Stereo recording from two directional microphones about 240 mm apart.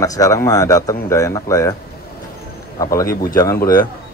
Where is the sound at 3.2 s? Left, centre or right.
Centre.